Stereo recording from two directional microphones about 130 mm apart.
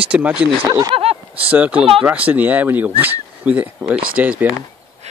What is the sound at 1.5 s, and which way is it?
Speech, 10° right (ahead or behind).